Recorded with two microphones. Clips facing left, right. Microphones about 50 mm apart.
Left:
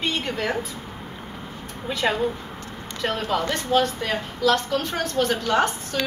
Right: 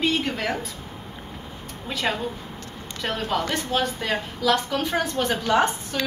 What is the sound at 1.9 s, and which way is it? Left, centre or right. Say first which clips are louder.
A woman's voice: left 3 dB; centre.